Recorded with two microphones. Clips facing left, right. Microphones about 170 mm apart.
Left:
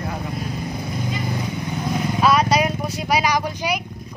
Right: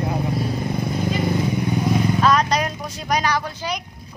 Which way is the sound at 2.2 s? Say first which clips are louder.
Left 6 dB; 10° left (ahead or behind).